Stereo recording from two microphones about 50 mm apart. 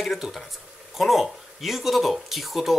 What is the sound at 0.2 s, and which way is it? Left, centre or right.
Speech, centre.